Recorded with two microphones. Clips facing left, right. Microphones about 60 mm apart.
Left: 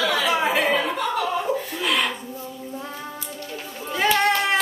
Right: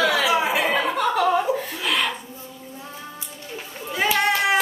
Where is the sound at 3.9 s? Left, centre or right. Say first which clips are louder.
Left 1 dB; centre.